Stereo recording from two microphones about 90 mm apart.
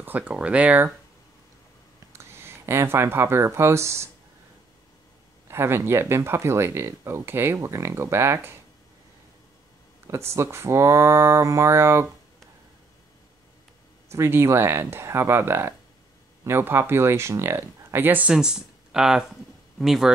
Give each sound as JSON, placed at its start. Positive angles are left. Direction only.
{"t": 0.0, "sound": "speech", "side_deg": -15}
{"t": 2.1, "sound": "speech", "side_deg": -30}
{"t": 5.5, "sound": "speech", "side_deg": -30}
{"t": 10.0, "sound": "speech", "side_deg": -30}
{"t": 14.1, "sound": "speech", "side_deg": -30}
{"t": 18.3, "sound": "speech", "side_deg": -5}